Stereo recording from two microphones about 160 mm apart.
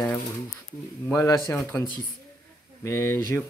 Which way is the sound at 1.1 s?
20° left (ahead or behind).